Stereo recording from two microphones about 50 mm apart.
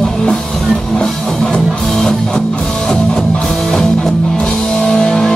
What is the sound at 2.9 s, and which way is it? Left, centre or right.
Music, centre.